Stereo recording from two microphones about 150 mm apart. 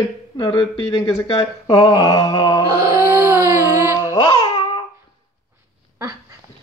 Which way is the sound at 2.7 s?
20° right (ahead or behind).